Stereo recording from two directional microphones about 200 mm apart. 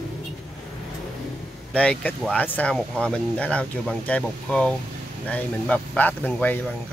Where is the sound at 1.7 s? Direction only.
5° left (ahead or behind).